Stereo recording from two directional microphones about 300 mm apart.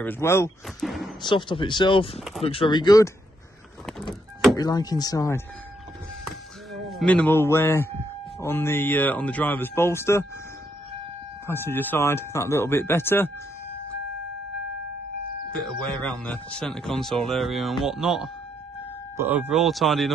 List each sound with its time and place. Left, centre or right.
0.0 s speech: centre
1.2 s speech: centre
4.1 s power windows: centre
4.6 s speech: centre
6.9 s speech: centre
11.4 s speech: centre
15.6 s speech: centre